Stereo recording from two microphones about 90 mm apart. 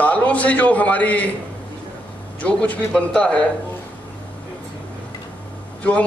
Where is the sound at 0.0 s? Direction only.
15° left (ahead or behind).